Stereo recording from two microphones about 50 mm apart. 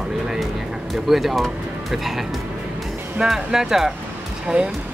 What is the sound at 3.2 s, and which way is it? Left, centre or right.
Speech, centre.